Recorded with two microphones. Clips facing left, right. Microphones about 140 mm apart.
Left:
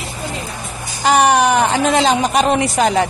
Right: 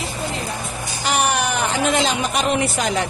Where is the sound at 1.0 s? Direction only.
40° left (ahead or behind).